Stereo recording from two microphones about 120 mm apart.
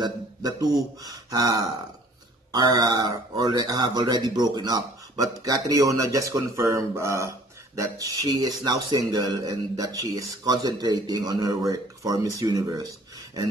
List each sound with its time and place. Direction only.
0.0 s speech: 30° right (ahead or behind)